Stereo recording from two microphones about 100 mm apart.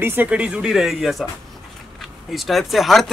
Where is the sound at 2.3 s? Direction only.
Centre (ahead or behind).